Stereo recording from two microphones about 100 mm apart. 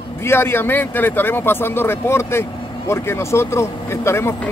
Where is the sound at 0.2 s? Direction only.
25° left (ahead or behind).